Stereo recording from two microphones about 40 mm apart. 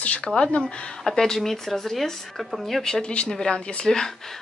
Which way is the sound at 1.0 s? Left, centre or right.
Centre.